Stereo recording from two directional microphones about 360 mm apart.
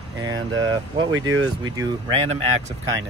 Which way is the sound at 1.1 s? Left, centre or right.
Right.